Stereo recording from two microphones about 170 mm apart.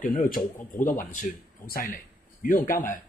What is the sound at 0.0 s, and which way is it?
Speech, 50° left (ahead or behind).